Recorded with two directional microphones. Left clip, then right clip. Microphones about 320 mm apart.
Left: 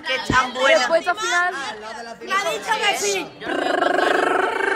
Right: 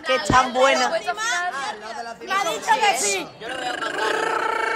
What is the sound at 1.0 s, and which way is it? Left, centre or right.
A woman's voice, right.